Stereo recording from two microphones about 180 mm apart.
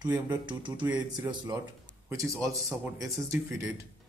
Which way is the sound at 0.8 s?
10° right (ahead or behind).